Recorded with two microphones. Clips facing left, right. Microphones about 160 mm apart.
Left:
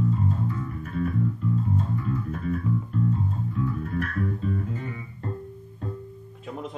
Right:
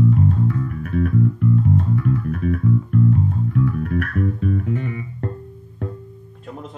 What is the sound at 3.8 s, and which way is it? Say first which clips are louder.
Bass guitar: right 6 dB; 70° right (ahead or behind).